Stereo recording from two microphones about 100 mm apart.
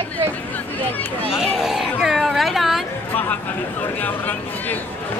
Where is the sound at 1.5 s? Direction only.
5° right (ahead or behind).